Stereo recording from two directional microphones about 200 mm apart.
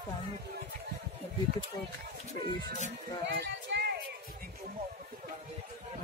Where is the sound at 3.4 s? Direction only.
60° right (ahead or behind).